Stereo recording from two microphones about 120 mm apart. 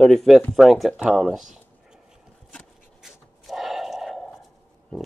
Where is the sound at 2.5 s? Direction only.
Centre (ahead or behind).